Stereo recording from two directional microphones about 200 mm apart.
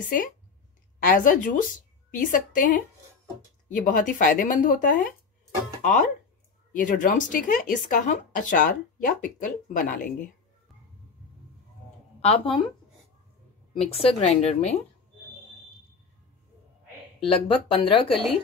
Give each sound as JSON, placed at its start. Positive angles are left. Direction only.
{"t": 0.9, "sound": "a woman's voice", "side_deg": 45}
{"t": 12.2, "sound": "speech", "side_deg": 30}
{"t": 13.7, "sound": "speech", "side_deg": 30}
{"t": 17.3, "sound": "speech", "side_deg": 25}